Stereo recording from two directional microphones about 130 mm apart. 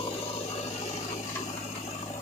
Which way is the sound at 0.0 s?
50° left (ahead or behind).